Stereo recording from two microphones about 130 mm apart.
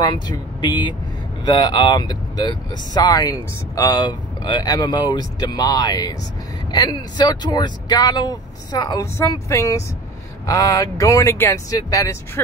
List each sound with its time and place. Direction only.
0.0 s speech: 35° left (ahead or behind)